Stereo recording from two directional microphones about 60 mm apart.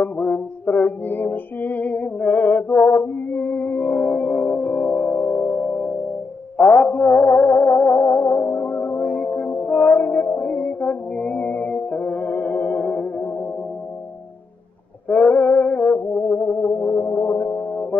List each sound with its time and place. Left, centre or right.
0.0 s music: left
15.0 s brass instrument: left